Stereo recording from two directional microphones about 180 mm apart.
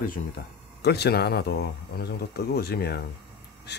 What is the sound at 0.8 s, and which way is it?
Speech, 65° left (ahead or behind).